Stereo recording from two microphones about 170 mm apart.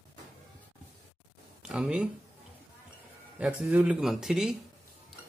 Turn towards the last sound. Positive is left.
turn(degrees=0)  # may be behind; listen again after turning